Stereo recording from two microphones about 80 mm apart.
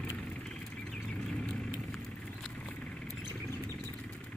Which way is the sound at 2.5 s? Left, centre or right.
Centre.